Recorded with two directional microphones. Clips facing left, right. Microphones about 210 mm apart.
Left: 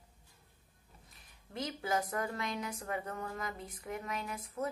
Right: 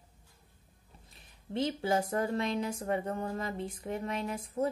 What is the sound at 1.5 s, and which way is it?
Speech, 25° right (ahead or behind).